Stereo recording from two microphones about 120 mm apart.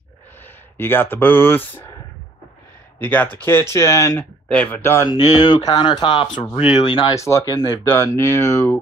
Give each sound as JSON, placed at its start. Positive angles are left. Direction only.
{"t": 0.7, "sound": "speech", "side_deg": 15}
{"t": 3.0, "sound": "speech", "side_deg": 15}
{"t": 4.5, "sound": "speech", "side_deg": 10}
{"t": 4.9, "sound": "speech", "side_deg": 40}
{"t": 6.5, "sound": "speech", "side_deg": 50}
{"t": 7.1, "sound": "speech", "side_deg": 25}
{"t": 7.8, "sound": "speech", "side_deg": 20}